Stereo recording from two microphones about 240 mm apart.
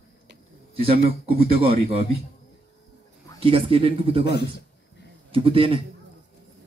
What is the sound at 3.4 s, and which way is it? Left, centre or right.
Speech, right.